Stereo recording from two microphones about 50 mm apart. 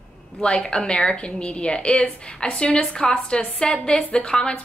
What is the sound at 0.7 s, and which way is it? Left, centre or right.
A woman's voice, centre.